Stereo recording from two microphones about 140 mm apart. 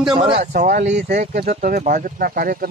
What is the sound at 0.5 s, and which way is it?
Speech, 65° right (ahead or behind).